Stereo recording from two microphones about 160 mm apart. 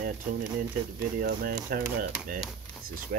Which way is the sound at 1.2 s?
65° right (ahead or behind).